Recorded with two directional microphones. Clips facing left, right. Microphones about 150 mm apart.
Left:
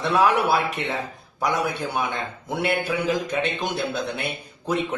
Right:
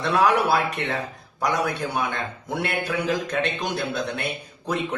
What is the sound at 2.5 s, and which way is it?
Speech, centre (ahead or behind).